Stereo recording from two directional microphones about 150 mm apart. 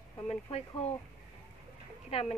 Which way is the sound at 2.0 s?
45° left (ahead or behind).